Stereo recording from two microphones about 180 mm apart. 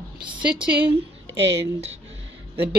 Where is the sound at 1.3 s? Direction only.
80° right.